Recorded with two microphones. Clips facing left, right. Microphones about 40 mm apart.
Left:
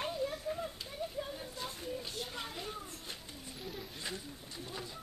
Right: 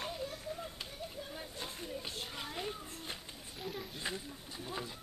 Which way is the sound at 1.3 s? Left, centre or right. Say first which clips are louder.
Left 2 dB; centre.